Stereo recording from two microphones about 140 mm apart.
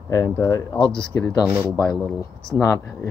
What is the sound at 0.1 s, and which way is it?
Speech, 25° left (ahead or behind).